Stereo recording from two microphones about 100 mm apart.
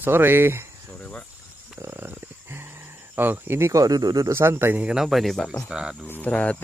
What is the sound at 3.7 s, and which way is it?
Speech, 40° right (ahead or behind).